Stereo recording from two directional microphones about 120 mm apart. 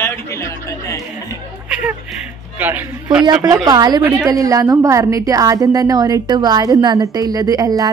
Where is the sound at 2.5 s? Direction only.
15° right (ahead or behind).